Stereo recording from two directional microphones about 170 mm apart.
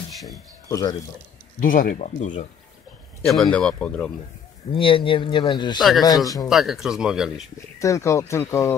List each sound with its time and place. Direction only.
0.1 s a sound: centre (ahead or behind)
0.7 s speech: 20° left (ahead or behind)
1.6 s speech: 55° left (ahead or behind)
3.3 s speech: 5° left (ahead or behind)
4.7 s speech: 30° left (ahead or behind)
5.8 s speech: centre (ahead or behind)
6.0 s speech: 20° left (ahead or behind)
6.5 s speech: centre (ahead or behind)
7.8 s speech: 20° left (ahead or behind)